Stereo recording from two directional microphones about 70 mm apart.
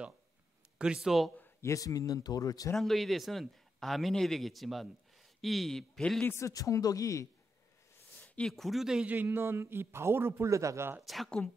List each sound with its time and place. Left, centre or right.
0.7 s speech: centre
1.6 s speech: left
2.7 s a man's voice: centre
6.4 s speech: left
8.5 s a man's voice: centre
9.0 s a man's voice: right
11.0 s a man's voice: centre
11.2 s a woman's voice: centre